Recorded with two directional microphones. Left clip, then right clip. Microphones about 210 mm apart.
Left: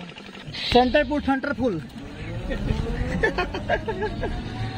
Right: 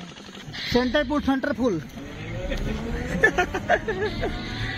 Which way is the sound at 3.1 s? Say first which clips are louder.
Right 4 dB; 15° left (ahead or behind).